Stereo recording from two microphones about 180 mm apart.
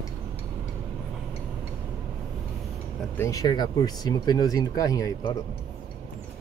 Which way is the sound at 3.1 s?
15° left (ahead or behind).